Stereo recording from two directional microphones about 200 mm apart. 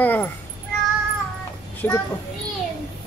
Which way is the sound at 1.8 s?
10° left (ahead or behind).